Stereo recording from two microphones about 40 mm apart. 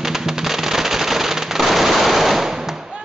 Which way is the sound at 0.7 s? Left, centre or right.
Centre.